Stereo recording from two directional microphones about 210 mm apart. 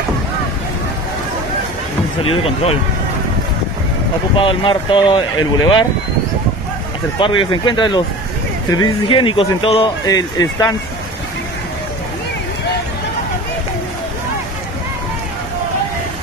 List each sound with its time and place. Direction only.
2.2 s speech: 25° left (ahead or behind)
4.4 s speech: 25° left (ahead or behind)
7.2 s speech: 25° left (ahead or behind)